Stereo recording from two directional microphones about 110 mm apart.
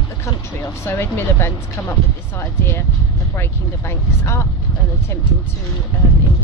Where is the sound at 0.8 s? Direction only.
20° left (ahead or behind).